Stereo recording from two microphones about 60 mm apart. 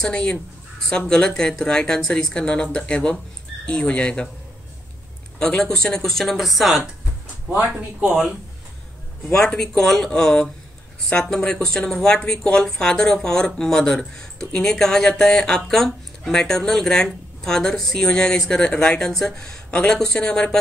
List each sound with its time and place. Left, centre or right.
0.0 s speech: centre
5.6 s speech: centre
7.7 s speech: centre
9.6 s speech: centre